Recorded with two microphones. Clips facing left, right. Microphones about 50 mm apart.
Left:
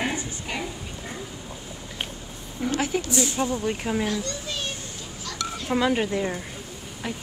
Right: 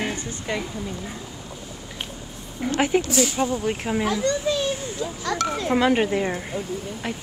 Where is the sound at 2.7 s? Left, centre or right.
Right.